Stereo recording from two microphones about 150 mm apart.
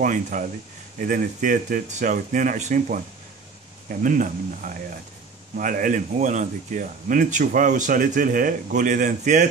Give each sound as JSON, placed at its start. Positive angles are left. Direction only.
{"t": 0.0, "sound": "a man's voice", "side_deg": -60}
{"t": 4.0, "sound": "a man's voice", "side_deg": -65}